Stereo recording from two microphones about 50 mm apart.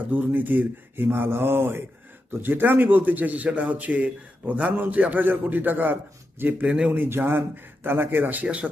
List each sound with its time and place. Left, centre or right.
0.1 s speech: right
2.4 s a man's voice: right